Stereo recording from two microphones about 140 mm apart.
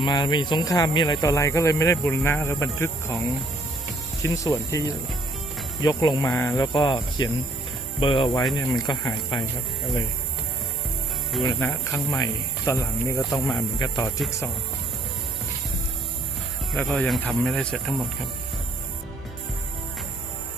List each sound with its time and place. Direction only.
0.0 s speech: 30° left (ahead or behind)
4.2 s speech: 25° left (ahead or behind)
6.7 s speech: 35° left (ahead or behind)
11.6 s speech: 20° left (ahead or behind)
16.8 s speech: centre (ahead or behind)